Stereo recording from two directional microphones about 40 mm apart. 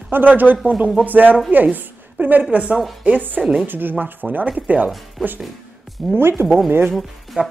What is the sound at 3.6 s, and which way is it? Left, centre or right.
Speech, right.